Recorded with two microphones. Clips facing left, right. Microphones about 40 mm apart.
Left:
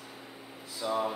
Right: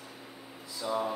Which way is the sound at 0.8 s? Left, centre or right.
Left.